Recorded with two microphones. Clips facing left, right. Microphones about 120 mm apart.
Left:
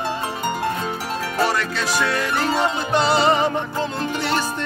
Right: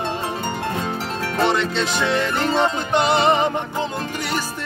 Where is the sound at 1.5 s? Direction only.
25° right (ahead or behind).